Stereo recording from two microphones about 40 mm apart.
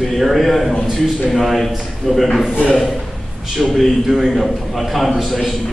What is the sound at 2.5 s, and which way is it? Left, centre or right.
Speech, left.